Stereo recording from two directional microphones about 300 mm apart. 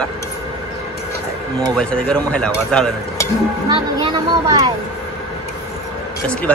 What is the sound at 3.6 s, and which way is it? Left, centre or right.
Speech, centre.